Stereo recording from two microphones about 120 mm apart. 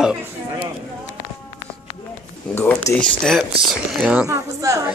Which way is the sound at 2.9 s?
5° left (ahead or behind).